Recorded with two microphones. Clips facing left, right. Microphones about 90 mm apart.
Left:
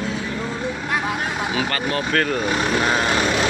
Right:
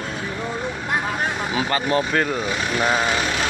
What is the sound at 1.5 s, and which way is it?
Speech, 20° right (ahead or behind).